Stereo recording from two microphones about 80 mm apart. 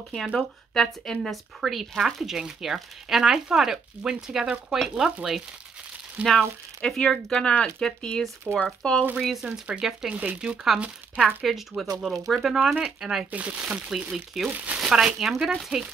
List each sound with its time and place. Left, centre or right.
0.4 s speech: centre
6.2 s speech: centre
13.3 s speech: centre
14.5 s speech: centre
14.8 s speech: centre